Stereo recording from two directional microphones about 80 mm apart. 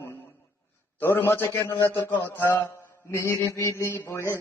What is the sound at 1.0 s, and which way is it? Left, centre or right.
Mantra, left.